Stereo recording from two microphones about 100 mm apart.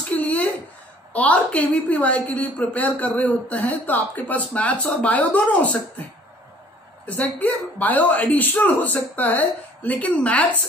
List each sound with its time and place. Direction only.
0.1 s a sound: 15° left (ahead or behind)
1.1 s a woman's voice: 15° left (ahead or behind)
7.1 s a woman's voice: 15° left (ahead or behind)